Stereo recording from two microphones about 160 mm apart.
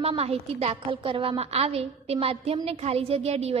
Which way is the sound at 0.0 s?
40° right (ahead or behind).